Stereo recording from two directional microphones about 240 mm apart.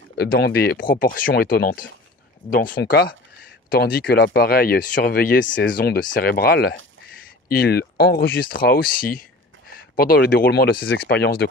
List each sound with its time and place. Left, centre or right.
0.2 s speech: left